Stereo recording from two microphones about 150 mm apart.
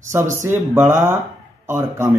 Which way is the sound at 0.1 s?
15° right (ahead or behind).